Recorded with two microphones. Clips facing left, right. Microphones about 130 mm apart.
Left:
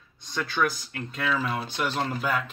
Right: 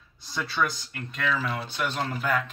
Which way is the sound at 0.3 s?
Centre (ahead or behind).